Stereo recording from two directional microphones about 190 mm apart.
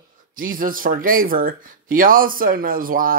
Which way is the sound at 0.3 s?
45° right (ahead or behind).